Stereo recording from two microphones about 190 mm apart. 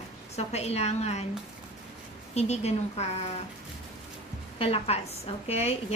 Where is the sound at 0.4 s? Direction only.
35° left (ahead or behind).